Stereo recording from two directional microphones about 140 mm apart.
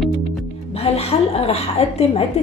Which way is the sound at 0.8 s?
45° left (ahead or behind).